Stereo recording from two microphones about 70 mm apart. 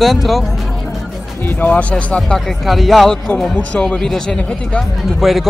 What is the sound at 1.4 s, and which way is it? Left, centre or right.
Speech, left.